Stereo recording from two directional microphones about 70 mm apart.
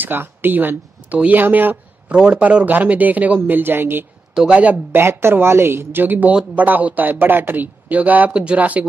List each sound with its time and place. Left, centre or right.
0.0 s speech: right
4.4 s speech: centre
5.0 s speech: right